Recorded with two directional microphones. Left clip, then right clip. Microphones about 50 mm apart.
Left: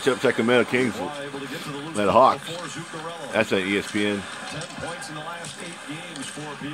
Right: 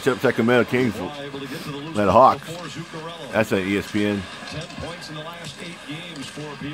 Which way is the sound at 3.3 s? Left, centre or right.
Centre.